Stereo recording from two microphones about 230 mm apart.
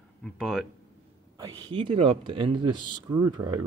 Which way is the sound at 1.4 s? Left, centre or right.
Centre.